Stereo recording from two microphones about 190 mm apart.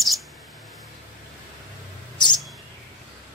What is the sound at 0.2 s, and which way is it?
Mouse, centre (ahead or behind).